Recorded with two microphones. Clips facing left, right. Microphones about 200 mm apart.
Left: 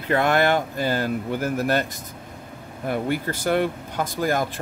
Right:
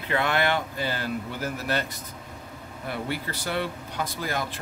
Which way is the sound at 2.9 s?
50° left (ahead or behind).